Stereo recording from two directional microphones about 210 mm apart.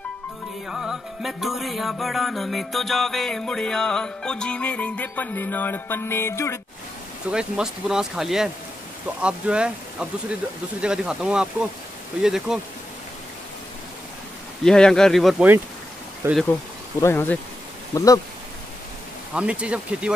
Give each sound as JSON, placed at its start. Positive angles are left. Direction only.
{"t": 0.7, "sound": "music", "side_deg": 0}
{"t": 7.2, "sound": "music", "side_deg": -5}
{"t": 14.6, "sound": "music", "side_deg": 5}
{"t": 16.2, "sound": "speech", "side_deg": -10}
{"t": 17.0, "sound": "speech", "side_deg": 10}
{"t": 19.3, "sound": "music", "side_deg": -5}